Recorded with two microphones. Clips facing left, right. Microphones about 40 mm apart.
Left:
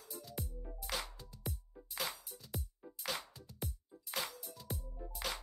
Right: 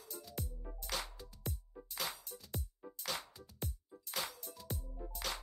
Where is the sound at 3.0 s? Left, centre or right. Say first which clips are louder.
Left 1 dB; centre.